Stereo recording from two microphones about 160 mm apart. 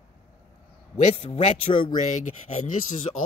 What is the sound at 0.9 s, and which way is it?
Speech, 40° left (ahead or behind).